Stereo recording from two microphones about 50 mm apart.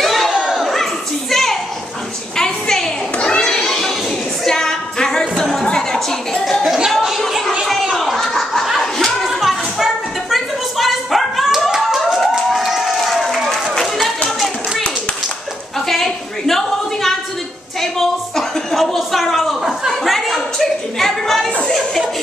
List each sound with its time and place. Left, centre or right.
0.0 s crowd: centre
0.3 s crowd: centre
0.6 s a sound: centre
3.3 s children playing: centre
4.5 s singing: centre
5.3 s a sound: centre
9.4 s music: centre
10.3 s dog: centre
12.2 s crowd: centre
15.9 s a sound: centre